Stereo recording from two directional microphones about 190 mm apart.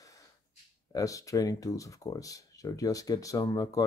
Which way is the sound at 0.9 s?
15° left (ahead or behind).